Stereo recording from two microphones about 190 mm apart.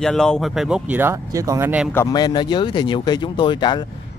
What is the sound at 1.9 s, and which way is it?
Speech, 15° left (ahead or behind).